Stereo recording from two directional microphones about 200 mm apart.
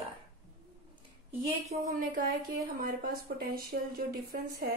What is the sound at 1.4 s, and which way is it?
Speech, 30° right (ahead or behind).